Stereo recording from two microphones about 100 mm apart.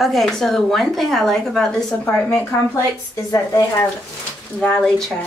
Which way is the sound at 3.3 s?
30° left (ahead or behind).